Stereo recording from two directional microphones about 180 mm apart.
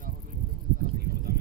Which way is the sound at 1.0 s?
60° right (ahead or behind).